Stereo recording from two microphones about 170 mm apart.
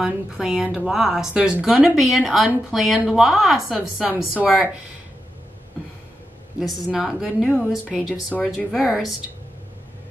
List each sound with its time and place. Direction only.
0.0 s speech: 5° right (ahead or behind)
6.7 s speech: centre (ahead or behind)
8.4 s speech: 5° left (ahead or behind)